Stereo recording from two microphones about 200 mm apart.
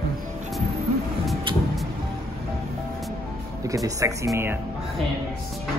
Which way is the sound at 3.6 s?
15° right (ahead or behind).